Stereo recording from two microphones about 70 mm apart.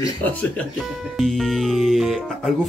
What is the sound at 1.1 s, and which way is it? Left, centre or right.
Music, centre.